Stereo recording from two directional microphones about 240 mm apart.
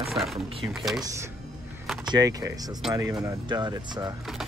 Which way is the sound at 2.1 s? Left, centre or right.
Centre.